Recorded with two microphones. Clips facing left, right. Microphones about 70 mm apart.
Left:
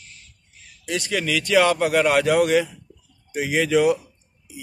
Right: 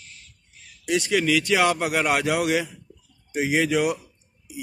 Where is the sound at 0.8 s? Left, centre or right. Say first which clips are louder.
Right 3 dB; centre.